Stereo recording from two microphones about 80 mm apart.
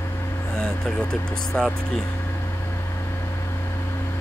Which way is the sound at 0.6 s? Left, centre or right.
Centre.